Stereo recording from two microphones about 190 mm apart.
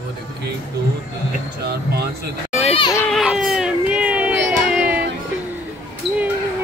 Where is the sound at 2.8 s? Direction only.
20° left (ahead or behind).